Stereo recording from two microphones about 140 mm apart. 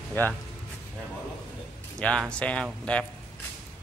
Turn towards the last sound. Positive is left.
turn(degrees=10)  # may be behind; listen again after turning